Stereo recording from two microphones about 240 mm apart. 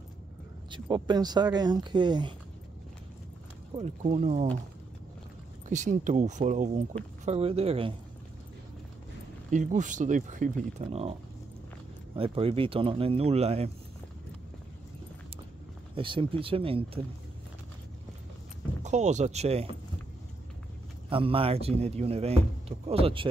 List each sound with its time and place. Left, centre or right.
0.7 s speech: centre
3.7 s speech: right
5.7 s speech: right
9.5 s speech: right
12.2 s speech: right
15.9 s speech: right
18.8 s speech: right
21.1 s speech: right